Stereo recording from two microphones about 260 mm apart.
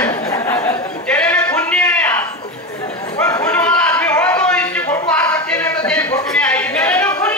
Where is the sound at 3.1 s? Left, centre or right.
Centre.